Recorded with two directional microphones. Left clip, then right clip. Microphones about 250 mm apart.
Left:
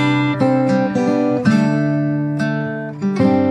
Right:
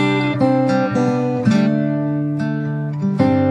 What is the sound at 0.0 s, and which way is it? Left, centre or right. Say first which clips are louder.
Music: even; centre.